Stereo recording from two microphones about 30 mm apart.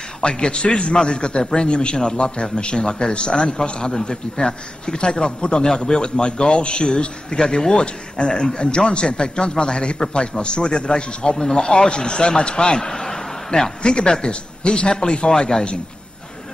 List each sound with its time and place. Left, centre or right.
0.2 s a man's voice: left
5.9 s speech: centre
6.2 s a man's voice: left
11.3 s speech: centre
11.9 s speech: left